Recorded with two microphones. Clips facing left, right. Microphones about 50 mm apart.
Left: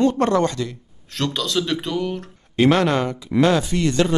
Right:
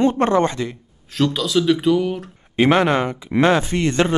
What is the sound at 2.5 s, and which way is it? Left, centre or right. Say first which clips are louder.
A man's voice: right 1 dB; right.